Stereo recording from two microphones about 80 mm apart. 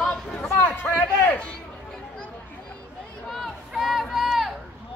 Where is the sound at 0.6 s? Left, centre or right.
Left.